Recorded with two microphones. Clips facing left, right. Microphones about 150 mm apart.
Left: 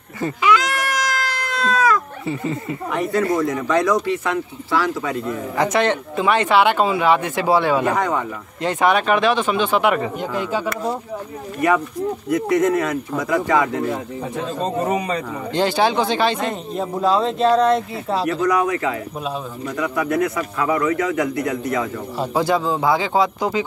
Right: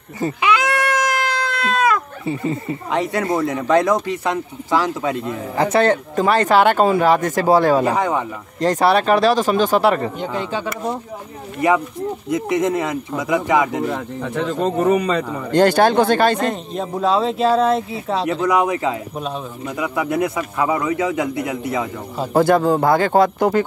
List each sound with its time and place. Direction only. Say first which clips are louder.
0.4 s sheep: even; 60° right (ahead or behind)
2.2 s a man's voice: right 2 dB; 25° right (ahead or behind)
2.9 s speech: even; 90° right
3.3 s a man's voice: right 1 dB; 25° right (ahead or behind)
5.6 s speech: right 3 dB; 35° right (ahead or behind)
8.0 s a man's voice: right 1 dB; 25° right (ahead or behind)
8.5 s speech: right 2 dB; 40° right (ahead or behind)
10.2 s speech: left 1 dB; 5° left (ahead or behind)
11.6 s a man's voice: right 1 dB; 25° right (ahead or behind)
13.8 s speech: right 1 dB; 75° right (ahead or behind)
15.5 s speech: right 5 dB; 50° right (ahead or behind)
16.3 s speech: right 2 dB; centre (ahead or behind)
18.2 s a man's voice: right 1 dB; 20° right (ahead or behind)
22.3 s speech: right 6 dB; 50° right (ahead or behind)